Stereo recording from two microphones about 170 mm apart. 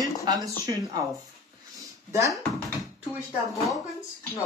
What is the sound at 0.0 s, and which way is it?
Speech, 20° right (ahead or behind).